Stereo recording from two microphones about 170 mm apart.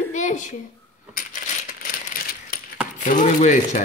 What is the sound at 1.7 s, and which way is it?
Rattle, 55° left (ahead or behind).